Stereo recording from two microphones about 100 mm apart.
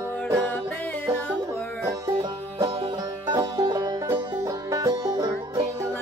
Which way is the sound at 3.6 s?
45° right (ahead or behind).